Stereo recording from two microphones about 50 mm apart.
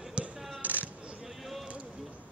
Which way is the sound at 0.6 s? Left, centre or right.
Right.